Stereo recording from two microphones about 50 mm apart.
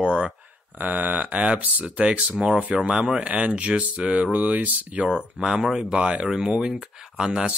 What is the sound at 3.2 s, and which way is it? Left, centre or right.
Speech, right.